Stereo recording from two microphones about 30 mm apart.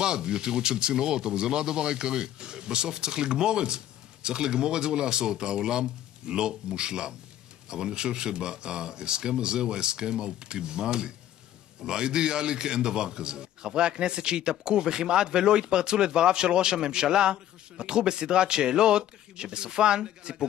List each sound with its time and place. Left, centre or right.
0.0 s a man's voice: right